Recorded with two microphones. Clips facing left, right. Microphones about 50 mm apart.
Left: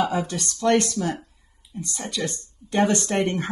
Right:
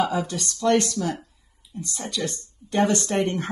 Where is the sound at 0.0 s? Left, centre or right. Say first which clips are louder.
Even; centre.